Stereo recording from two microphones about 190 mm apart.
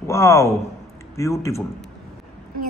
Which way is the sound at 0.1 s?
15° left (ahead or behind).